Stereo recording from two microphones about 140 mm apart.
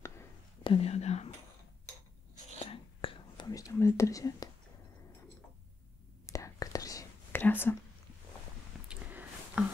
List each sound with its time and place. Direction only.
0.7 s whispering: 45° left (ahead or behind)
2.6 s whispering: 40° left (ahead or behind)
3.4 s whispering: 25° left (ahead or behind)
6.2 s whispering: 25° left (ahead or behind)
7.3 s whispering: 15° left (ahead or behind)
8.8 s a sound: 10° right (ahead or behind)